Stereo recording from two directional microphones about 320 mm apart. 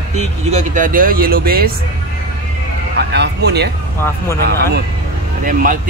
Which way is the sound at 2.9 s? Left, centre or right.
Right.